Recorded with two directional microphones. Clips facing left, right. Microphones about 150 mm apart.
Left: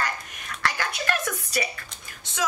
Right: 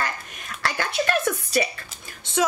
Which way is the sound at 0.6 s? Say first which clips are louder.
Right 4 dB; 30° right (ahead or behind).